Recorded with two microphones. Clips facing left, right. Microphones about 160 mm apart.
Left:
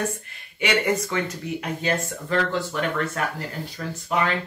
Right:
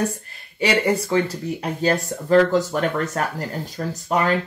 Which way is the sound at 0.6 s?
35° right (ahead or behind).